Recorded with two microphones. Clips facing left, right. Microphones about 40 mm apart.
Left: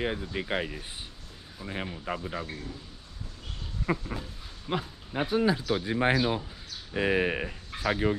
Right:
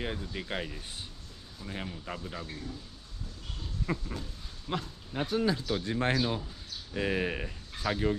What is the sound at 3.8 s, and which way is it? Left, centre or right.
Speech, left.